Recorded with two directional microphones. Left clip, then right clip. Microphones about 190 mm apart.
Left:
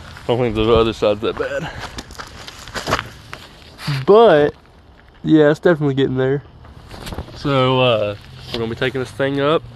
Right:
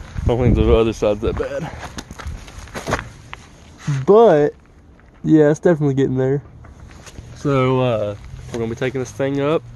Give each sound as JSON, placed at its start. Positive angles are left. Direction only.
{"t": 0.3, "sound": "speech", "side_deg": -10}
{"t": 1.4, "sound": "a sound", "side_deg": -15}
{"t": 2.7, "sound": "walk", "side_deg": -15}
{"t": 3.8, "sound": "speech", "side_deg": 15}
{"t": 5.2, "sound": "speech", "side_deg": -10}
{"t": 7.4, "sound": "speech", "side_deg": 0}